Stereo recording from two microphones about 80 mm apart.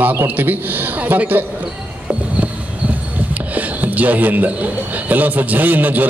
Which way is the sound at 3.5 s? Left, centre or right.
Centre.